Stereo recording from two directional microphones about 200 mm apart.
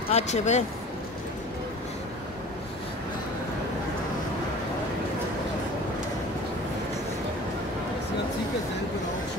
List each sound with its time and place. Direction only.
0.1 s speech: 35° left (ahead or behind)